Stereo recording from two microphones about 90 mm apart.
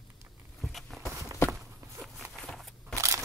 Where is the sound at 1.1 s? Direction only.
35° right (ahead or behind).